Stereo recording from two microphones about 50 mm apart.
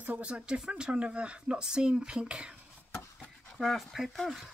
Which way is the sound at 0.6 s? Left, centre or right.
Centre.